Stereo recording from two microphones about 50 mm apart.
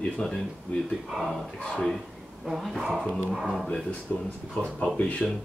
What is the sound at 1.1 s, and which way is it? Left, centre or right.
Speech, centre.